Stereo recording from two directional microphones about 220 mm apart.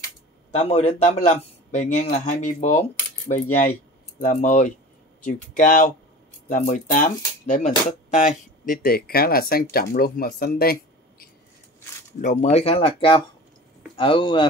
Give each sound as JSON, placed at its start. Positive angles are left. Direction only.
{"t": 0.6, "sound": "a man's voice", "side_deg": 30}
{"t": 12.2, "sound": "a man's voice", "side_deg": 35}